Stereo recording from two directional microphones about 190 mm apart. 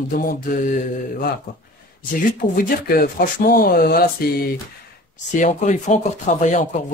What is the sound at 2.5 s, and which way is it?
Speech, 50° left (ahead or behind).